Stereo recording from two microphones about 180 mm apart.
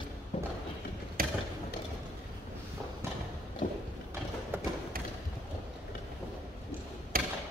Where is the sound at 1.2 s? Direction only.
55° right (ahead or behind).